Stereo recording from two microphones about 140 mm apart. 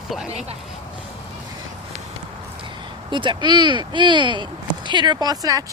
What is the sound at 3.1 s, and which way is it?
Speech, 35° right (ahead or behind).